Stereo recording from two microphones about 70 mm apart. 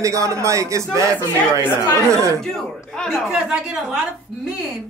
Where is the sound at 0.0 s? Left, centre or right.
Right.